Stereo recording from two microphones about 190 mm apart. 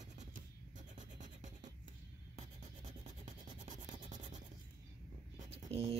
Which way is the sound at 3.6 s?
40° right (ahead or behind).